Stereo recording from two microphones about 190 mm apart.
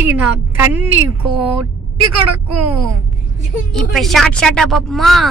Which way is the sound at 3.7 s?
Centre (ahead or behind).